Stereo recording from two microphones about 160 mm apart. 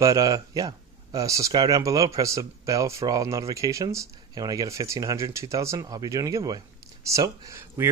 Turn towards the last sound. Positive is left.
turn(degrees=-15)  # may be behind; listen again after turning